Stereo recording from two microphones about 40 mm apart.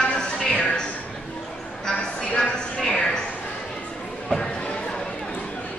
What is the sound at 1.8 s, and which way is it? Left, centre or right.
A woman's voice, centre.